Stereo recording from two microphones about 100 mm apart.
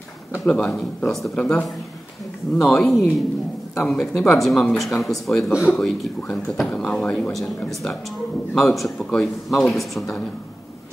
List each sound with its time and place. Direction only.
0.5 s speech: 5° left (ahead or behind)
5.3 s speech: 30° left (ahead or behind)
5.7 s speech: 5° left (ahead or behind)